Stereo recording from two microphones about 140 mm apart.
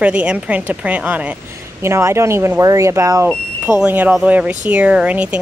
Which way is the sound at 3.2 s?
10° right (ahead or behind).